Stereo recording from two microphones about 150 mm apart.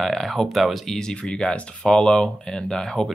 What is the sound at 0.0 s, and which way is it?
Speech, centre (ahead or behind).